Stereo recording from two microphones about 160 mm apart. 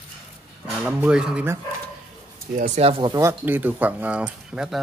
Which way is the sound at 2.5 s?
55° right (ahead or behind).